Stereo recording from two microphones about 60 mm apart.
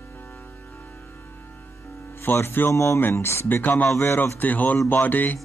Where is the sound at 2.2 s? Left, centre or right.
Left.